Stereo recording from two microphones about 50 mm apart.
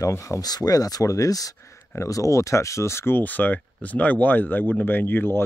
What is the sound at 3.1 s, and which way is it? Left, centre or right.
Speech, left.